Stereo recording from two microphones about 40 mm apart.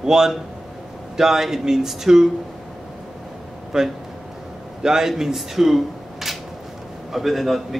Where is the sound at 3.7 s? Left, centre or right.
Centre.